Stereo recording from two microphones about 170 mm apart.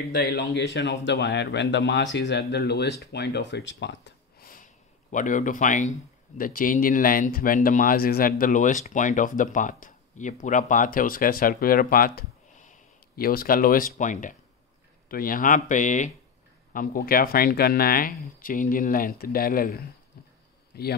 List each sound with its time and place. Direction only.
0.1 s speech: 80° left; by 4.6 s 60° left (ahead or behind)
5.1 s a man's voice: 50° left (ahead or behind); by 20.9 s 65° left (ahead or behind)